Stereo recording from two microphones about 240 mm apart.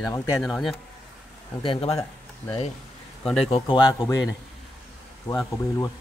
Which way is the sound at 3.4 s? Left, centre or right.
Left.